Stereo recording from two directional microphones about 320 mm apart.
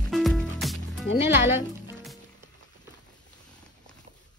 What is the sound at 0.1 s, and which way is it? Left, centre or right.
Music, centre.